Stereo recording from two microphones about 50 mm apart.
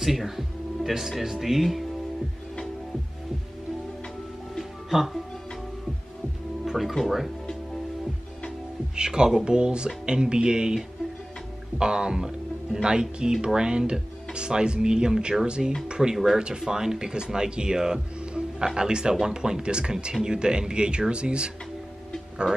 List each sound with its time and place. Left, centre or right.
0.0 s speech: centre
4.6 s music: centre
6.6 s speech: centre
8.9 s speech: centre